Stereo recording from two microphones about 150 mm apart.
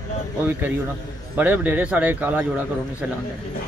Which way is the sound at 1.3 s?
10° right (ahead or behind).